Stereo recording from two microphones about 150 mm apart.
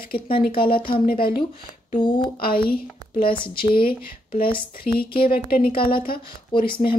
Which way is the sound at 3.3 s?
35° left (ahead or behind).